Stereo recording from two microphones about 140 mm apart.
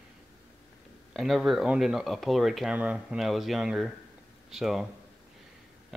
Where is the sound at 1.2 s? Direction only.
Centre (ahead or behind).